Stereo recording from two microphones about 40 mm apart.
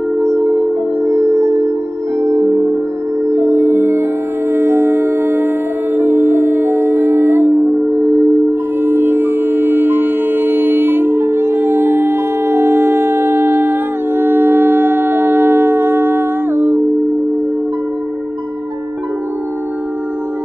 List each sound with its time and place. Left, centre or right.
3.3 s music: right
5.9 s music: right
7.5 s music: centre
8.9 s music: right
15.0 s humming: right